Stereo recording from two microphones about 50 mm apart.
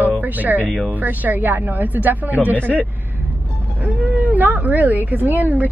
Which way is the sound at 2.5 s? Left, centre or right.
Left.